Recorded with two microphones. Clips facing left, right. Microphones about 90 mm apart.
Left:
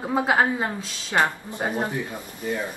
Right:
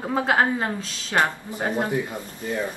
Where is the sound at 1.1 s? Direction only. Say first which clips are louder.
Even; 20° left (ahead or behind).